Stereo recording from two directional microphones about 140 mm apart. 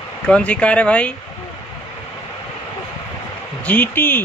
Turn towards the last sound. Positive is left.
turn(degrees=15)  # may be behind; listen again after turning